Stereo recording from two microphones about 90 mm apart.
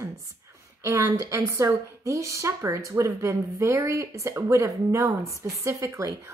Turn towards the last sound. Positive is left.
turn(degrees=-30)  # may be behind; listen again after turning